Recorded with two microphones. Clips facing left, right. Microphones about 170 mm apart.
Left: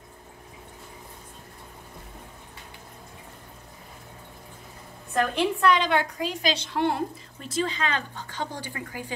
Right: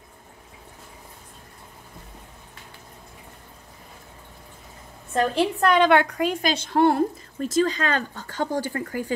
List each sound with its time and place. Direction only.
5.1 s a woman's voice: 30° right (ahead or behind)
5.6 s a woman's voice: 55° right (ahead or behind)